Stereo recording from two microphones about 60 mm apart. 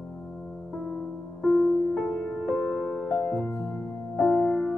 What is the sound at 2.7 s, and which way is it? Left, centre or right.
Music, centre.